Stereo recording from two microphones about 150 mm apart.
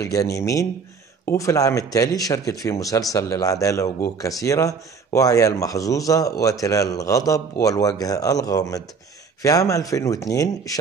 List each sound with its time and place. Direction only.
0.0 s a man's voice: 20° left (ahead or behind)